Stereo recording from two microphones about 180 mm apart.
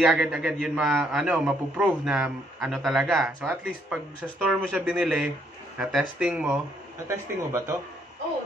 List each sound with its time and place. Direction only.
0.0 s a man's voice: 5° right (ahead or behind)
7.1 s speech: 15° right (ahead or behind)